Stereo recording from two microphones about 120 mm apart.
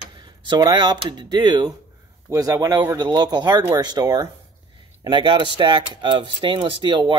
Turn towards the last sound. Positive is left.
turn(degrees=-40)  # may be behind; listen again after turning